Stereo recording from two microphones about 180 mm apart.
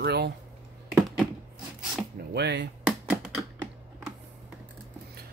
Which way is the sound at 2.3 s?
65° right (ahead or behind).